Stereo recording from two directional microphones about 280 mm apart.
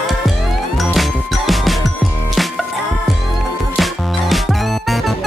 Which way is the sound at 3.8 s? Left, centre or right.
Centre.